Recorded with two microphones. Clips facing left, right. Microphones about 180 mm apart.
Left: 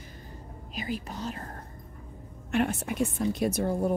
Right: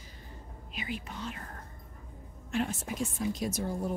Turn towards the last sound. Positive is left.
turn(degrees=60)  # may be behind; listen again after turning